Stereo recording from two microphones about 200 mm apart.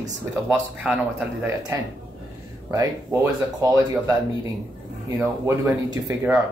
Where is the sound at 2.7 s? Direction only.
15° right (ahead or behind).